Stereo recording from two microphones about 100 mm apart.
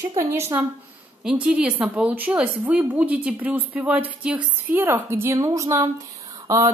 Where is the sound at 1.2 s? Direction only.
10° right (ahead or behind).